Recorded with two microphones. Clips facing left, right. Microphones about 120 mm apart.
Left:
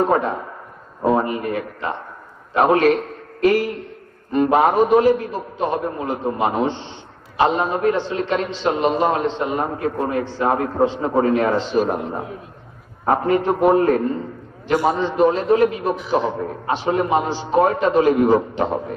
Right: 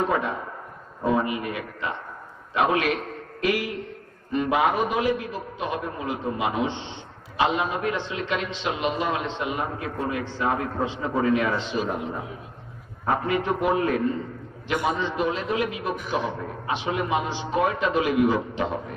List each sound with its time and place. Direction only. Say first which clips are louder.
0.0 s a man's voice: left 6 dB; 40° left (ahead or behind)